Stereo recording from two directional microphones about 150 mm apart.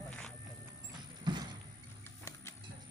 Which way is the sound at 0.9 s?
30° right (ahead or behind).